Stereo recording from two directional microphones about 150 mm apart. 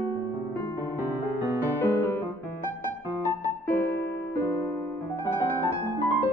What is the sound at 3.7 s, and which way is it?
Music, 10° left (ahead or behind).